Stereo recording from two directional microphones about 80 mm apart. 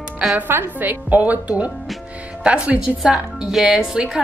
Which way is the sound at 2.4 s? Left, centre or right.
Centre.